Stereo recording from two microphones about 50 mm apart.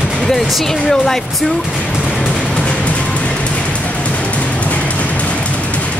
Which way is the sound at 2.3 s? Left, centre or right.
Left.